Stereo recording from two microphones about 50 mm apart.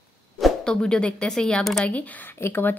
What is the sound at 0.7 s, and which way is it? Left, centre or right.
Speech, centre.